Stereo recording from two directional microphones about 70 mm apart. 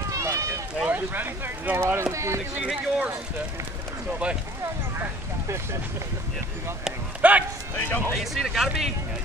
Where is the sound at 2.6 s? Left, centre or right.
Centre.